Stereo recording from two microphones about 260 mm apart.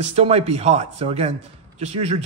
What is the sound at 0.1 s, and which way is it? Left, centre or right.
Speech, right.